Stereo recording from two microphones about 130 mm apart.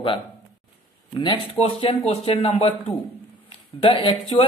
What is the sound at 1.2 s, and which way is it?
Speech, 45° left (ahead or behind).